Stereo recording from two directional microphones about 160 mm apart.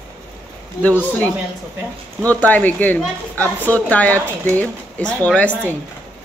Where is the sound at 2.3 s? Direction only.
10° left (ahead or behind).